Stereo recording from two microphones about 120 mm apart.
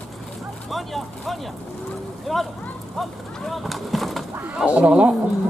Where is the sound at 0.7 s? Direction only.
Centre (ahead or behind).